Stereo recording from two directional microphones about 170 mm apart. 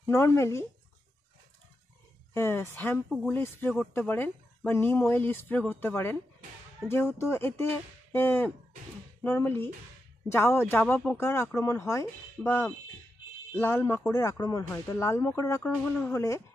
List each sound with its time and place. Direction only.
0.0 s speech: 15° left (ahead or behind)
2.3 s speech: 15° left (ahead or behind)
6.8 s speech: centre (ahead or behind)
7.2 s speech: 15° left (ahead or behind)
15.7 s speech: 5° left (ahead or behind)
16.1 s speech: 15° left (ahead or behind)